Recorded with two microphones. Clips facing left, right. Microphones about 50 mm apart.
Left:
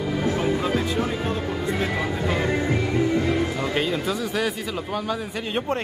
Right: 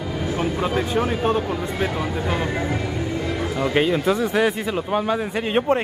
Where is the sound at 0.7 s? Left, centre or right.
Right.